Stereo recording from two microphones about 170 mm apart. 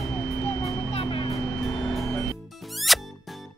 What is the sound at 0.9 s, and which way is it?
Vehicle, 30° left (ahead or behind).